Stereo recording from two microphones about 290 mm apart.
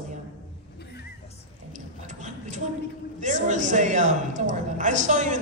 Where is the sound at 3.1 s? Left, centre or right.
Right.